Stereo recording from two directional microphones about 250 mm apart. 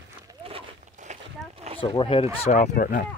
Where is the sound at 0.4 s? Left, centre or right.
Right.